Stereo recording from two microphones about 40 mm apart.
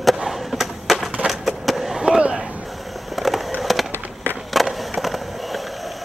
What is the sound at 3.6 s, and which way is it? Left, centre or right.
Skateboard, centre.